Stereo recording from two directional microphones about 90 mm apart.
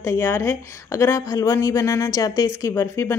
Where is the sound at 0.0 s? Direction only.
30° left (ahead or behind).